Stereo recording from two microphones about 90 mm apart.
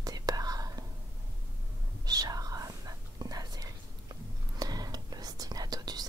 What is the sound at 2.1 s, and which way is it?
Whispering, 45° right (ahead or behind).